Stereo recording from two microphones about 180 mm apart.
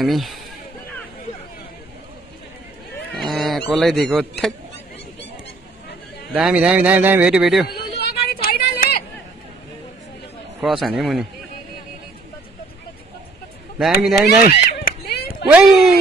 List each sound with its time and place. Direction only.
0.0 s a man's voice: centre (ahead or behind)
3.1 s goose: centre (ahead or behind)
6.3 s a man's voice: 5° right (ahead or behind)
8.0 s a sound: 60° left (ahead or behind)
10.6 s a man's voice: centre (ahead or behind)
13.7 s a man's voice: centre (ahead or behind)
14.5 s a sound: 60° left (ahead or behind)
15.4 s a man's voice: 5° right (ahead or behind)